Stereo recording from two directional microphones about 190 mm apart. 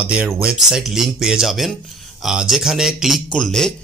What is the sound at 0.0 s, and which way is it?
A man's voice, 5° right (ahead or behind).